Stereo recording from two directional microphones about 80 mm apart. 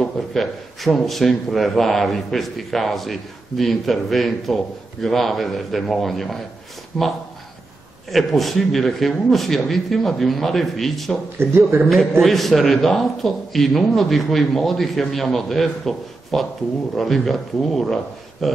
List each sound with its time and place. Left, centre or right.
0.0 s speech: centre
11.3 s a man's voice: right
11.9 s speech: centre